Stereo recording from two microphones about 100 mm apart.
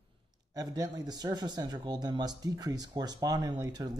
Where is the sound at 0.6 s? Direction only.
40° right (ahead or behind).